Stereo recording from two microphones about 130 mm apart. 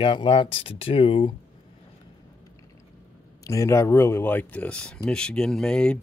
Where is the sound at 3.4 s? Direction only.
25° left (ahead or behind).